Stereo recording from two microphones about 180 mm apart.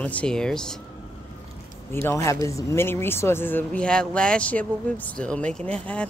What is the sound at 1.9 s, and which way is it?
Speech, 15° left (ahead or behind).